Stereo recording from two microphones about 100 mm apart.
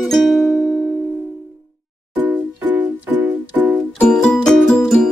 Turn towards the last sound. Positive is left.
turn(degrees=5)  # may be behind; listen again after turning